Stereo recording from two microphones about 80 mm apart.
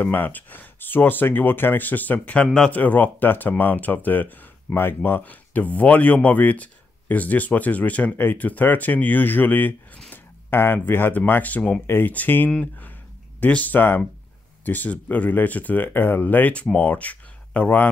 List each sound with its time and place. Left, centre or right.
0.0 s speech: left
2.4 s speech: centre
2.7 s speech: left
9.9 s a sound: centre
10.5 s speech: left